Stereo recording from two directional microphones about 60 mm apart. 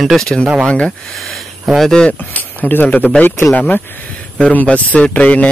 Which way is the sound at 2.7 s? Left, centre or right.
Left.